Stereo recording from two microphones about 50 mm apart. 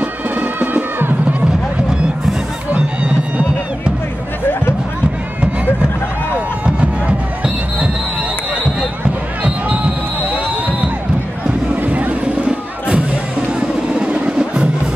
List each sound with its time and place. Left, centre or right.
0.0 s music: right
2.7 s music: right
6.6 s music: right
11.7 s music: right